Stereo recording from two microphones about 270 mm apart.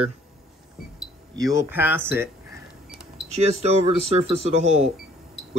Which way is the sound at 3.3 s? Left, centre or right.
Right.